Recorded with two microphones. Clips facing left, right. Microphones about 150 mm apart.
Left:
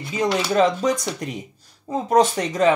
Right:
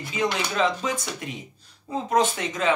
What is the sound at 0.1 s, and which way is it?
Speech, 40° left (ahead or behind).